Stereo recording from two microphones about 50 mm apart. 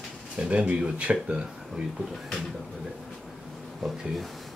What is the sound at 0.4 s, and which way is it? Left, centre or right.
Speech, right.